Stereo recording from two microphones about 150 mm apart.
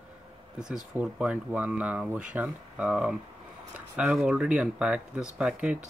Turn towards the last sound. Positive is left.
turn(degrees=-10)  # may be behind; listen again after turning